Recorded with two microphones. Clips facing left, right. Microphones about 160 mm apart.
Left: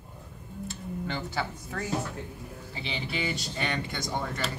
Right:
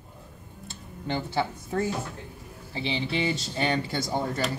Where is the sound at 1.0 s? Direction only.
25° right (ahead or behind).